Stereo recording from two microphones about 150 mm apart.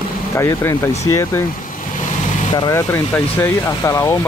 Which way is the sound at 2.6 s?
20° left (ahead or behind).